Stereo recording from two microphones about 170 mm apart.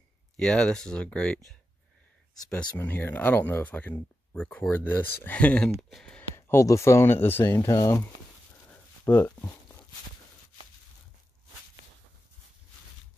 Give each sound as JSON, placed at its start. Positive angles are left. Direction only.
{"t": 0.4, "sound": "speech", "side_deg": 5}
{"t": 2.5, "sound": "speech", "side_deg": 10}
{"t": 6.3, "sound": "speech", "side_deg": 15}